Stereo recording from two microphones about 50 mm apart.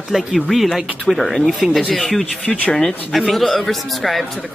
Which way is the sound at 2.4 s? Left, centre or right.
Left.